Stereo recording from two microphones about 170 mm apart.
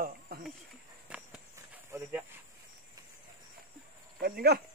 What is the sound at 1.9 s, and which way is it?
Snake, 15° right (ahead or behind).